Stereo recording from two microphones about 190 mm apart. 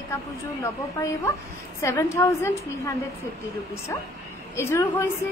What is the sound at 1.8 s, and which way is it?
A woman's voice, 15° left (ahead or behind).